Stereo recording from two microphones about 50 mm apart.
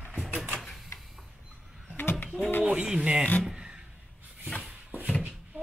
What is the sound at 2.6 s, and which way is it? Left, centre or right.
Speech, right.